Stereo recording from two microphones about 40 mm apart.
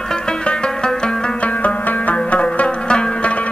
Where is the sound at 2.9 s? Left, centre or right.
Left.